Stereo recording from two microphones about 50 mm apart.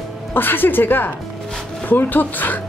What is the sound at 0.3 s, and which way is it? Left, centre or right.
A woman's voice, left.